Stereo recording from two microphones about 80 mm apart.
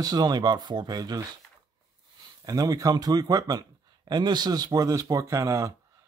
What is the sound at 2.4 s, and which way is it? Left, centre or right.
Speech, right.